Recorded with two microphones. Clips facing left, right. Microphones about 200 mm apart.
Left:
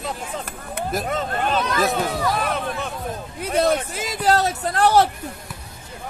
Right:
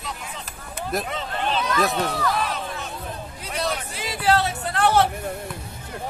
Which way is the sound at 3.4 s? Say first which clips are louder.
Left 9 dB; 50° left (ahead or behind).